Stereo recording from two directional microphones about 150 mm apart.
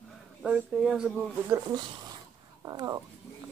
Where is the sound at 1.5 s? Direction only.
25° right (ahead or behind).